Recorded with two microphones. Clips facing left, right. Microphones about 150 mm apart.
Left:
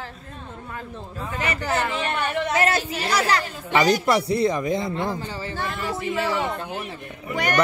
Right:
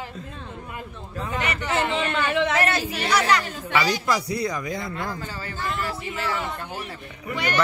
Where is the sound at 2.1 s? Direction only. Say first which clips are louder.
Right 2 dB; 90° right.